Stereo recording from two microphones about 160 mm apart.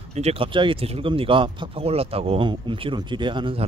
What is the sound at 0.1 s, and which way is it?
Speech, 40° right (ahead or behind).